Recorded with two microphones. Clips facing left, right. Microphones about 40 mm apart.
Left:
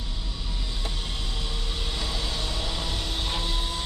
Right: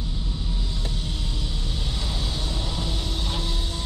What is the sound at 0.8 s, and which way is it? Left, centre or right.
Vehicle, left.